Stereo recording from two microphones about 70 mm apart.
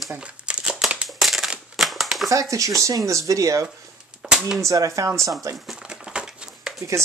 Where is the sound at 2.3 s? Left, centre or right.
Right.